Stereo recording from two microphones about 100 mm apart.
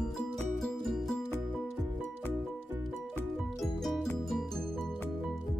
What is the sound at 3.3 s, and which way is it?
Music, centre (ahead or behind).